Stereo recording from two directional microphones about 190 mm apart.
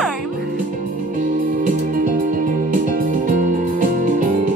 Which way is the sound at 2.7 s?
40° right (ahead or behind).